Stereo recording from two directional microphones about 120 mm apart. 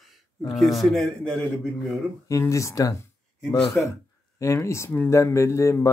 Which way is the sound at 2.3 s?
25° left (ahead or behind).